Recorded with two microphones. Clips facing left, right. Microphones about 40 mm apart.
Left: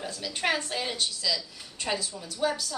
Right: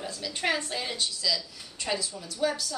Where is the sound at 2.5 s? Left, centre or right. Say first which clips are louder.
Even; centre.